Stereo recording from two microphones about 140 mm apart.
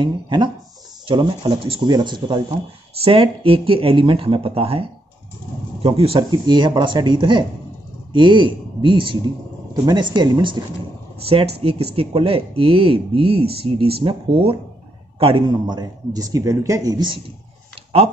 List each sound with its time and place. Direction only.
0.0 s speech: 35° right (ahead or behind)
11.2 s a man's voice: 45° right (ahead or behind)